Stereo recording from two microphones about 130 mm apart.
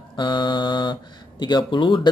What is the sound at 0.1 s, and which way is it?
Mantra, 35° left (ahead or behind).